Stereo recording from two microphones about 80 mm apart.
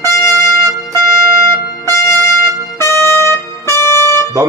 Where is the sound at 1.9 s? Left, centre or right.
Left.